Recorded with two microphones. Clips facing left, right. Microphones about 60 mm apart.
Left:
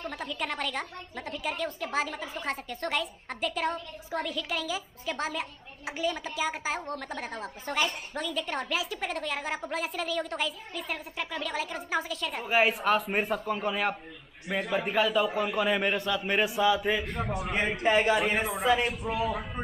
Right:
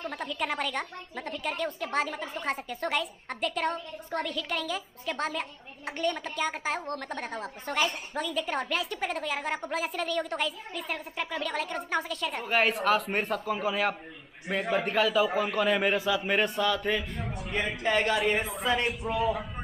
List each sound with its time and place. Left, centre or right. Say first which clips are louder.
0.0 s speech: right 1 dB; centre
17.2 s a man's voice: left 5 dB; left
17.8 s speech: left 2 dB; centre